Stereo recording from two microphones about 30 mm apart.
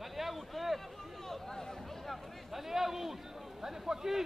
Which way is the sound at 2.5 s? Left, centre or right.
Centre.